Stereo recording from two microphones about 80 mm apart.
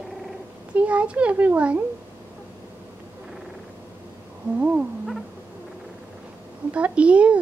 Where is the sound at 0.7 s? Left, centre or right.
Centre.